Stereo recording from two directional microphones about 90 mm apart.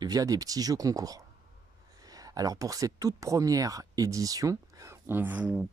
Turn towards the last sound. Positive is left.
turn(degrees=-20)  # may be behind; listen again after turning